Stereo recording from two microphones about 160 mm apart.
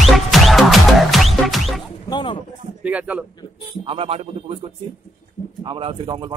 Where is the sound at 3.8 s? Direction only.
35° right (ahead or behind).